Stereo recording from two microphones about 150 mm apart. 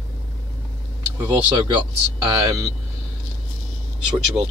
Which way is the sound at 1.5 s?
30° right (ahead or behind).